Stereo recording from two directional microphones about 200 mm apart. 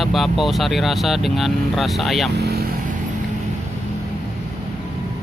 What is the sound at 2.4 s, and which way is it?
Vehicle, 50° right (ahead or behind).